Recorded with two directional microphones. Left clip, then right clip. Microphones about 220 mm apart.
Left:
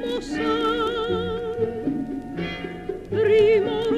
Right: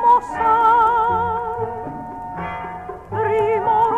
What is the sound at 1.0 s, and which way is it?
Music, 50° right (ahead or behind).